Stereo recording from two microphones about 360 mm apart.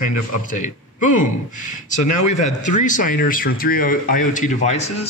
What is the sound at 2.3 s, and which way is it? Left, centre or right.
Speech, centre.